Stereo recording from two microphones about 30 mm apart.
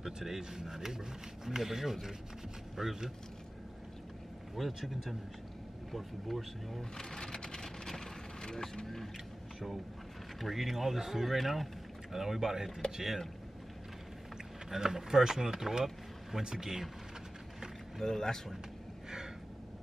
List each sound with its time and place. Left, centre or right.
0.0 s speech: centre
4.7 s speech: centre
6.8 s vehicle: centre
8.8 s speech: centre
10.4 s speech: centre
14.7 s speech: centre
18.0 s speech: centre